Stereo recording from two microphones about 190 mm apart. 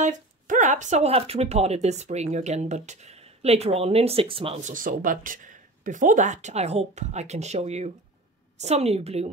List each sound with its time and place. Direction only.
0.0 s speech: 40° right (ahead or behind)